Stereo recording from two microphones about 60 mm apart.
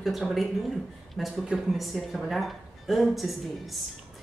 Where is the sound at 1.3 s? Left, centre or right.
Centre.